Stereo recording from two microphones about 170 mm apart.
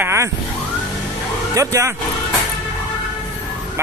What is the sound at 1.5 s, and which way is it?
Speech, 20° right (ahead or behind).